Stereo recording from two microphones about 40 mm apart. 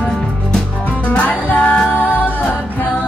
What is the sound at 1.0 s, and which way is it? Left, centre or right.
Music, left.